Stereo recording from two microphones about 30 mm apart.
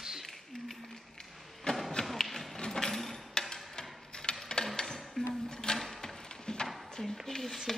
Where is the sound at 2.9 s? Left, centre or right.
Centre.